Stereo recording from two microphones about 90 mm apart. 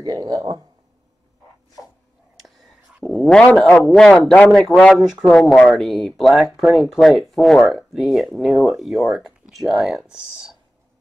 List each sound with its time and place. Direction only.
0.0 s speech: 45° right (ahead or behind)
3.1 s speech: 5° left (ahead or behind)
4.9 s speech: 5° right (ahead or behind)
5.3 s speech: 5° left (ahead or behind)